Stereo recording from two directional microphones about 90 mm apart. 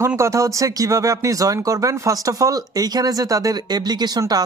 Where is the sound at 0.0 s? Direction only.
35° right (ahead or behind).